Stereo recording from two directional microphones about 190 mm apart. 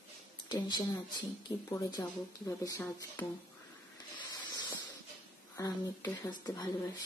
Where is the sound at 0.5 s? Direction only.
20° left (ahead or behind).